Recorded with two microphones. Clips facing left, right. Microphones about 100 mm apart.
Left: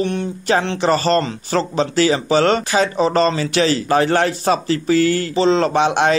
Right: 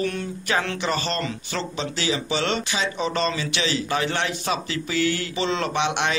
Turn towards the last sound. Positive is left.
turn(degrees=40)  # may be behind; listen again after turning